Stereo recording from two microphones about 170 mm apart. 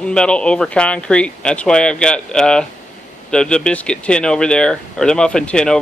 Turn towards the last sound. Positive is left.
turn(degrees=5)  # may be behind; listen again after turning